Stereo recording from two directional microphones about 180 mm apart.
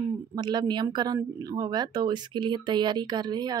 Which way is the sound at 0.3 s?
25° right (ahead or behind).